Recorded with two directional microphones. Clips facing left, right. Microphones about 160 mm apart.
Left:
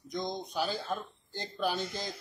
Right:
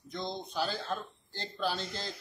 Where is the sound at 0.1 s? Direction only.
15° left (ahead or behind).